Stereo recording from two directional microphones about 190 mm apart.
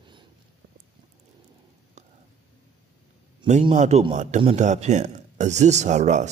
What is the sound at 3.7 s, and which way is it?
Speech, 35° right (ahead or behind).